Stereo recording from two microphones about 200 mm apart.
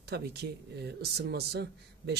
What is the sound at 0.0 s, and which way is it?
Speech, 55° right (ahead or behind).